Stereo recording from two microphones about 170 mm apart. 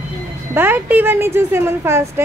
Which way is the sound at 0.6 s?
10° right (ahead or behind).